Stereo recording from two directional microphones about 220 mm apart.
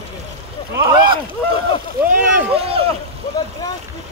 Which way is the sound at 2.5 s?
25° right (ahead or behind).